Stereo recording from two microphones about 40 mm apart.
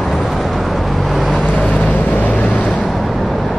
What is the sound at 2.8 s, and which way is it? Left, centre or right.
Vehicle, centre.